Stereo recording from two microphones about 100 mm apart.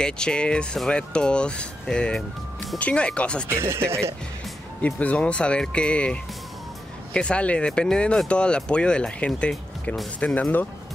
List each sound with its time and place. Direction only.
0.0 s speech: 10° left (ahead or behind)
3.4 s speech: 25° right (ahead or behind)
4.8 s speech: 15° left (ahead or behind)
7.2 s speech: 10° left (ahead or behind)